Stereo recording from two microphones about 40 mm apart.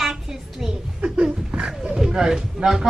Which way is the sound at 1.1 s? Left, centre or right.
Right.